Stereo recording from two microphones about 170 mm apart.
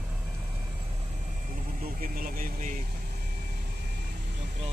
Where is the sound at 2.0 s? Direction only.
55° right (ahead or behind).